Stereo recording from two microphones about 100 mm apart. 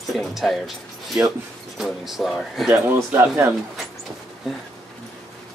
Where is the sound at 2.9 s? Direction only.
25° right (ahead or behind).